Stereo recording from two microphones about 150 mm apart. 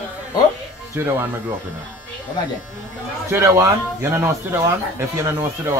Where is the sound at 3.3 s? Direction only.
20° right (ahead or behind).